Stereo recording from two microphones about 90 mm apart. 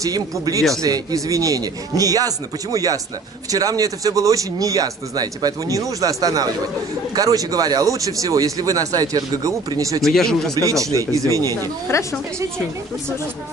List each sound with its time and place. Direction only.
0.0 s speech: 40° right (ahead or behind)
10.0 s speech: 5° left (ahead or behind)
10.6 s speech: 40° right (ahead or behind)
11.9 s a woman's voice: 35° left (ahead or behind)